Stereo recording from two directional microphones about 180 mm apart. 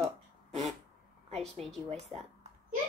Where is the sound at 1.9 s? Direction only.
35° right (ahead or behind).